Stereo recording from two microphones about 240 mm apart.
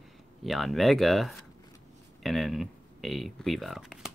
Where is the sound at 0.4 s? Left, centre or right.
Centre.